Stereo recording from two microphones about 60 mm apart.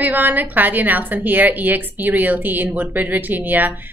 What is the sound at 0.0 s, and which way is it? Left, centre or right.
A woman's voice, right.